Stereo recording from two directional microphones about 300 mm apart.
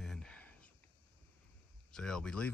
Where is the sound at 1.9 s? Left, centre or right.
Centre.